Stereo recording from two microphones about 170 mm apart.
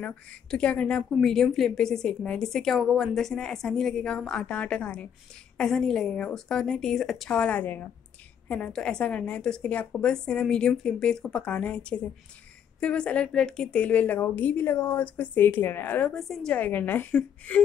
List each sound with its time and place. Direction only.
0.0 s a woman's voice: 5° left (ahead or behind)